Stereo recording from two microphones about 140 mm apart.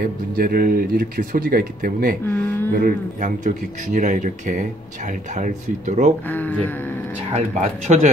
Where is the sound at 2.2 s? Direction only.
15° left (ahead or behind).